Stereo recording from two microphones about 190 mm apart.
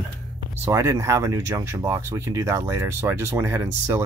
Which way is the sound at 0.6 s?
15° right (ahead or behind).